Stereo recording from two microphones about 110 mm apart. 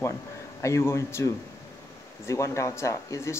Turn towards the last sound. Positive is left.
turn(degrees=25)  # may be behind; listen again after turning